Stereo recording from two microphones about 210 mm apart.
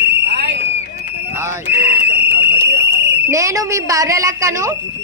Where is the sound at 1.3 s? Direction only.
10° right (ahead or behind).